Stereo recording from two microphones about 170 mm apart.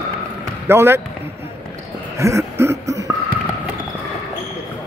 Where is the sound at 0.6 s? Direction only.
15° right (ahead or behind).